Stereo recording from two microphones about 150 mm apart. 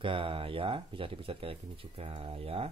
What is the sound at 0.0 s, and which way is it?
Speech, 35° right (ahead or behind).